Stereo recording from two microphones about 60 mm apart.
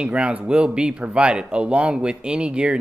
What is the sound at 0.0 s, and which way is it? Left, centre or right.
Speech, centre.